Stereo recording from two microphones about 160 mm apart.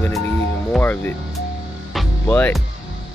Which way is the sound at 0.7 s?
10° left (ahead or behind).